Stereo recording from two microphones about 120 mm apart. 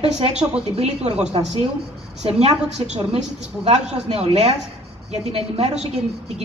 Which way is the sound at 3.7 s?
60° right (ahead or behind).